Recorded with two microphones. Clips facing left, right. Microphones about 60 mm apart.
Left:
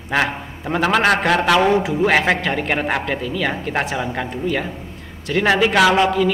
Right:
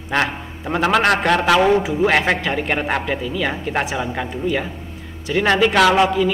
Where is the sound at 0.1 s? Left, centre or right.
Centre.